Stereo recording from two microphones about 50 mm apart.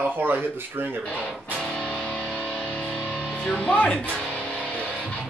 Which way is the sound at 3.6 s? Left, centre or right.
Left.